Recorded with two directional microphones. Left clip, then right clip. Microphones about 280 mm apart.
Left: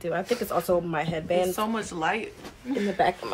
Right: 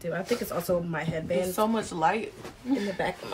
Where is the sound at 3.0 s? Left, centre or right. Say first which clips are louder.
Left 7 dB; centre.